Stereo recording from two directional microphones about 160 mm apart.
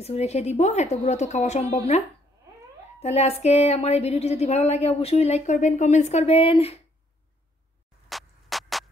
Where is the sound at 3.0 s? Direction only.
40° left (ahead or behind).